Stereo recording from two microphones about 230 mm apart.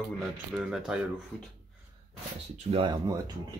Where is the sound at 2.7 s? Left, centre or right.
Right.